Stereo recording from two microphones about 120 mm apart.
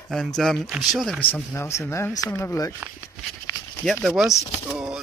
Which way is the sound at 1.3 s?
20° left (ahead or behind).